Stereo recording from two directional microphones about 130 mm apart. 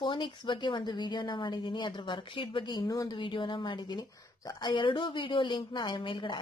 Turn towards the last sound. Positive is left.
turn(degrees=40)  # may be behind; listen again after turning